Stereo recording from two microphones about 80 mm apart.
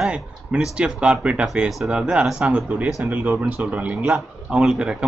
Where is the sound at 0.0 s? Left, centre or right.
Centre.